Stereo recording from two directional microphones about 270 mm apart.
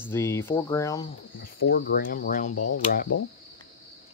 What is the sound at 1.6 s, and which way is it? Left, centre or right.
Speech, left.